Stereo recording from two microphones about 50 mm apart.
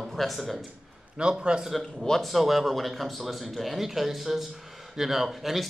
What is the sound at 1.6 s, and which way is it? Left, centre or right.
Speech, centre.